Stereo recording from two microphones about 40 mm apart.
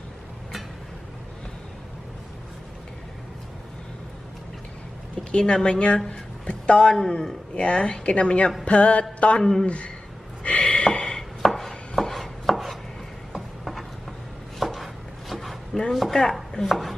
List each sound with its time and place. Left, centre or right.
5.3 s a woman's voice: left
8.6 s music: left
9.4 s speech: centre
10.4 s a sound: left
11.4 s chopping: centre
14.6 s a sound: centre
16.6 s speech: centre